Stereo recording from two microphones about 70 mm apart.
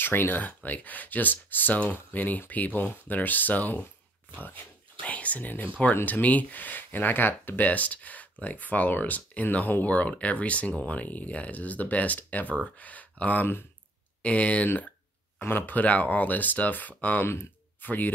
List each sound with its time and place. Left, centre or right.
0.0 s speech: left
5.0 s speech: left
14.2 s speech: centre